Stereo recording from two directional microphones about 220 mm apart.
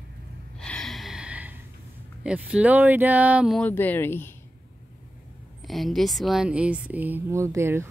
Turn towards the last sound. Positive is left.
turn(degrees=-10)  # may be behind; listen again after turning